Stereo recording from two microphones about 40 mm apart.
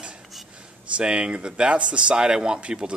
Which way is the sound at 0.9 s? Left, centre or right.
Right.